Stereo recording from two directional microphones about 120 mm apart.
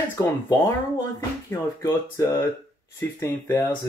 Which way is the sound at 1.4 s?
25° left (ahead or behind).